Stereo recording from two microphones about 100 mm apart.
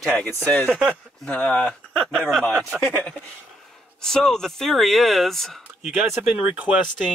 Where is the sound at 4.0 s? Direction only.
5° left (ahead or behind).